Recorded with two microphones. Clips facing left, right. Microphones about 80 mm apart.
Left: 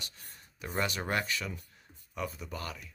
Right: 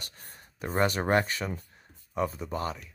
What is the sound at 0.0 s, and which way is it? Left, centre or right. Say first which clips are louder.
Speech: right 2 dB; right.